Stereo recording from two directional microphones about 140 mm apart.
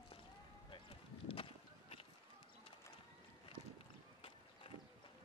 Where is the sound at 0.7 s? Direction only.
40° left (ahead or behind).